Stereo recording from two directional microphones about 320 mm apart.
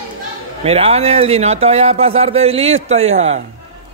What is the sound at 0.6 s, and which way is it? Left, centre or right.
Speech, centre.